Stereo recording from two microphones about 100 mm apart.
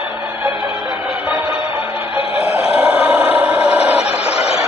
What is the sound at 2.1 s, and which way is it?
Music, 90° left.